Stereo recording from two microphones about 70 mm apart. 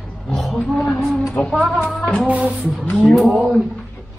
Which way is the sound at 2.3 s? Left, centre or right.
Centre.